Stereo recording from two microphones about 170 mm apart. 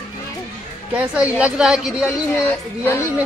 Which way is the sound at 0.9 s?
10° right (ahead or behind).